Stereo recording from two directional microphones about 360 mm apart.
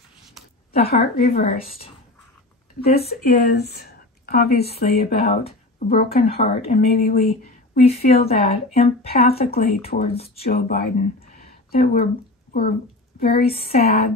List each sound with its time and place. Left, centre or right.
0.7 s a woman's voice: centre
2.9 s speech: left
13.2 s a woman's voice: centre